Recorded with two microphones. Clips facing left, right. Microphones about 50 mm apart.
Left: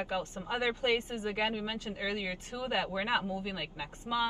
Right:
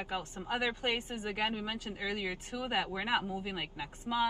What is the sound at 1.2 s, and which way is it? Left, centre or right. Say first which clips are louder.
A woman's voice: left 2 dB; right.